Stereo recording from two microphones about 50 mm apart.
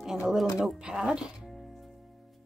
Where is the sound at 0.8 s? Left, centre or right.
Centre.